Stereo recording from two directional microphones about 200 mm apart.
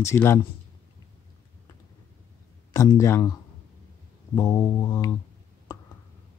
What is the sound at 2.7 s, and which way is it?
Speech, 15° left (ahead or behind).